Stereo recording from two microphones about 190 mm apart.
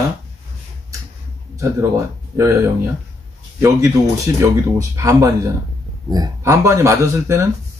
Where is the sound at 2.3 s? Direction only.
15° right (ahead or behind).